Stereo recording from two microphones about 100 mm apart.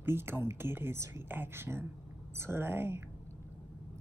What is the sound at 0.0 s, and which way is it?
A woman's voice, 25° right (ahead or behind).